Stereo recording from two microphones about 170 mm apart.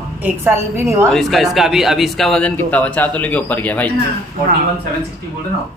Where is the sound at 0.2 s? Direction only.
10° right (ahead or behind).